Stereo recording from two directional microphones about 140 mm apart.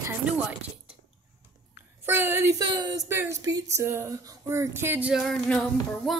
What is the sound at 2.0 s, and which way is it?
Speech, 15° right (ahead or behind).